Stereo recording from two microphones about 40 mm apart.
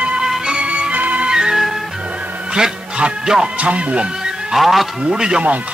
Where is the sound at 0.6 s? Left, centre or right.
Right.